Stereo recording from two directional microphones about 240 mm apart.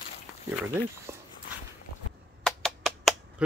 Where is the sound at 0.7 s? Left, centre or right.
Centre.